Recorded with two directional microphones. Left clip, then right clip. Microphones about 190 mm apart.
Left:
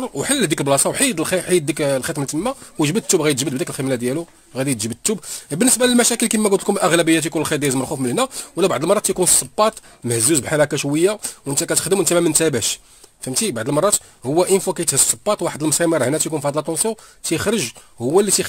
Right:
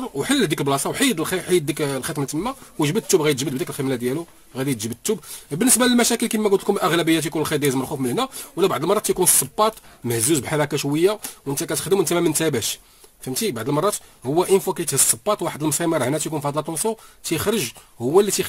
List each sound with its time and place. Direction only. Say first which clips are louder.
0.0 s speech: left 1 dB; 35° left (ahead or behind)